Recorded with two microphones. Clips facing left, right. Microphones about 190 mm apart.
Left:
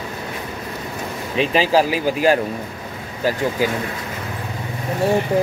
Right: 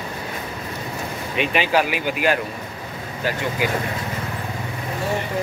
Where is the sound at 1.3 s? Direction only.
30° left (ahead or behind).